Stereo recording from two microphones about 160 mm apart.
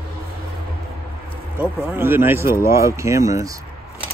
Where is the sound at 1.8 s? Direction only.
15° right (ahead or behind).